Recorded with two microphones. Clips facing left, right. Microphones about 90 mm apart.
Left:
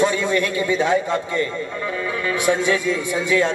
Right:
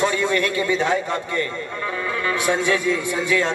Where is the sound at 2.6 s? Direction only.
15° left (ahead or behind).